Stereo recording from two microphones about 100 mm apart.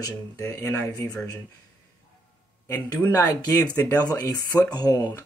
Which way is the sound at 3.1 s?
35° left (ahead or behind).